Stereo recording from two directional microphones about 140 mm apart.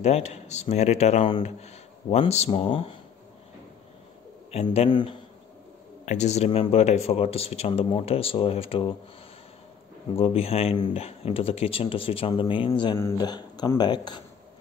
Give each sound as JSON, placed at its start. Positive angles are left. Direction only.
{"t": 0.0, "sound": "speech", "side_deg": 50}
{"t": 4.5, "sound": "a man's voice", "side_deg": 50}
{"t": 4.8, "sound": "speech", "side_deg": 35}
{"t": 6.0, "sound": "speech", "side_deg": 55}
{"t": 10.1, "sound": "speech", "side_deg": 45}
{"t": 12.9, "sound": "speech", "side_deg": 25}